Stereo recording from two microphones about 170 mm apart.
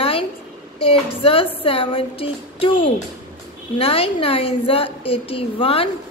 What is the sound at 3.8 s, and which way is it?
A woman's voice, 35° left (ahead or behind).